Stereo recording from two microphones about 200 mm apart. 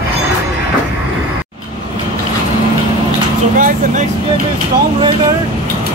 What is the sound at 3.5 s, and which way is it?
Vehicle, 40° right (ahead or behind).